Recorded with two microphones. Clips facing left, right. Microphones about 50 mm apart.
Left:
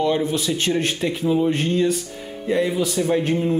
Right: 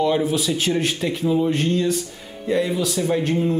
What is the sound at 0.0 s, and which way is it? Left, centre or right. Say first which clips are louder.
Speech: right 1 dB; centre.